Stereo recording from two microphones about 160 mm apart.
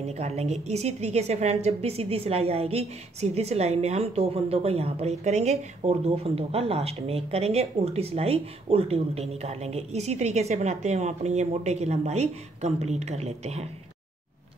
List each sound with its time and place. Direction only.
0.0 s a woman's voice: 40° right (ahead or behind)